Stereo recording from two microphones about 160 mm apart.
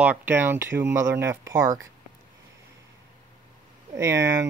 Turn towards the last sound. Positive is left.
turn(degrees=-15)  # may be behind; listen again after turning